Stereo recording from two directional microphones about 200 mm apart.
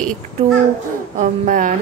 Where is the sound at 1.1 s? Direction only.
40° right (ahead or behind).